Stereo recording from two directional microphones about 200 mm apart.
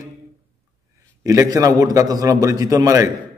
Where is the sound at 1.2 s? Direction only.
15° right (ahead or behind).